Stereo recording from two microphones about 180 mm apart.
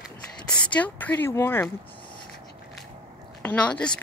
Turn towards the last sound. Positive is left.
turn(degrees=5)  # may be behind; listen again after turning